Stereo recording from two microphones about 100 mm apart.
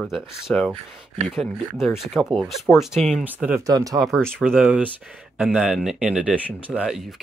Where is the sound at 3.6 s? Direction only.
35° right (ahead or behind).